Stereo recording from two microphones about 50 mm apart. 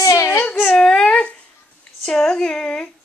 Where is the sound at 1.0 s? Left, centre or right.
Left.